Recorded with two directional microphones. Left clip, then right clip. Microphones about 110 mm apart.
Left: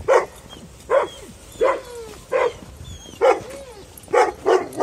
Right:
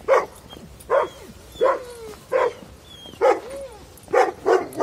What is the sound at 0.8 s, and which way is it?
Bow-wow, 75° left (ahead or behind).